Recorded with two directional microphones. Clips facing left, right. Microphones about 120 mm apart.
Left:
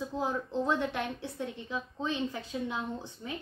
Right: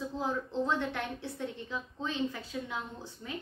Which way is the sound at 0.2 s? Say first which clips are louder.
Left 1 dB; 15° left (ahead or behind).